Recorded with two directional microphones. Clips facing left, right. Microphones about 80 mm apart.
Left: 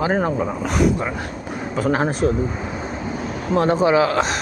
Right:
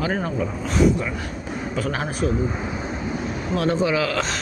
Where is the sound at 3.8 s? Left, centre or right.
Left.